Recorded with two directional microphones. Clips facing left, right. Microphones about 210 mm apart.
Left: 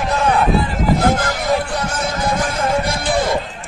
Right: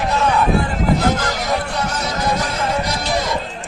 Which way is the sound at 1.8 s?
50° left (ahead or behind).